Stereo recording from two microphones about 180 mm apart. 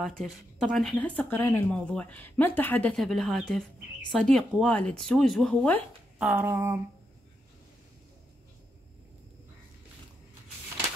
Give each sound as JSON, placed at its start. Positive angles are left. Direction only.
{"t": 0.0, "sound": "speech", "side_deg": 0}